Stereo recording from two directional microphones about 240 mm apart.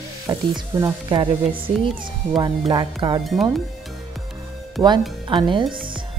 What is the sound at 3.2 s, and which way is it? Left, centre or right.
Speech, centre.